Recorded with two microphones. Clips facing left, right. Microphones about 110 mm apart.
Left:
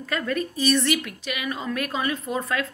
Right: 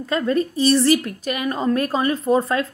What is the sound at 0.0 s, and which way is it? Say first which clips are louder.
A woman's voice: right 6 dB; 25° right (ahead or behind).